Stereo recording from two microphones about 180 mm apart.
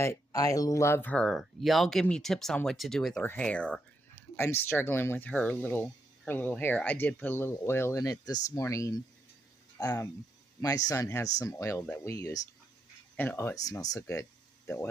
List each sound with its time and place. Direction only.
0.0 s speech: 15° left (ahead or behind)